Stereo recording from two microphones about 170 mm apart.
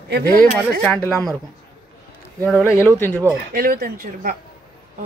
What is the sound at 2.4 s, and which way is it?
Speech, 10° left (ahead or behind).